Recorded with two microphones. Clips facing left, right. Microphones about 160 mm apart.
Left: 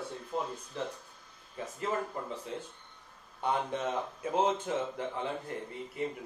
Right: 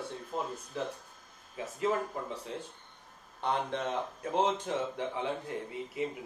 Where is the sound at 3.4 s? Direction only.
10° left (ahead or behind).